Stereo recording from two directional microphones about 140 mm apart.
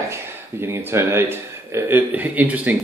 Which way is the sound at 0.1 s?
15° right (ahead or behind).